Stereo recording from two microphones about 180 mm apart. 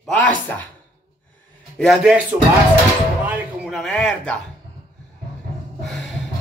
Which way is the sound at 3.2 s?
10° right (ahead or behind).